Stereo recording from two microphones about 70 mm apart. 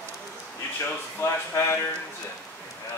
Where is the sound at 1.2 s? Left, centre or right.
Left.